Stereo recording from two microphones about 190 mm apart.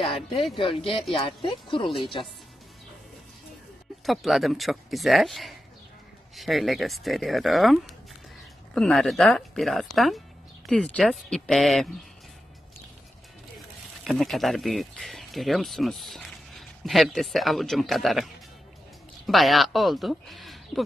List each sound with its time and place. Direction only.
0.6 s speech: 25° left (ahead or behind)
4.0 s speech: centre (ahead or behind)
14.0 s speech: centre (ahead or behind)